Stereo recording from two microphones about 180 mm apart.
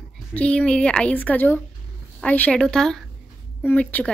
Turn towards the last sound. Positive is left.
turn(degrees=5)  # may be behind; listen again after turning